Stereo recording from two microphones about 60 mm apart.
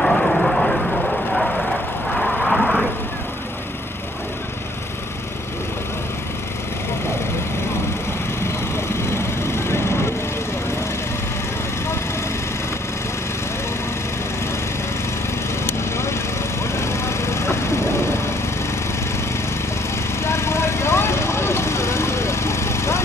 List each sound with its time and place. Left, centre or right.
0.0 s vehicle: centre
8.5 s vehicle: left
15.6 s a sound: left
20.2 s vehicle: left